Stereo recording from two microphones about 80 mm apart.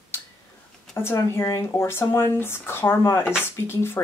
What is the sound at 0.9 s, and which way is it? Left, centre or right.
Speech, left.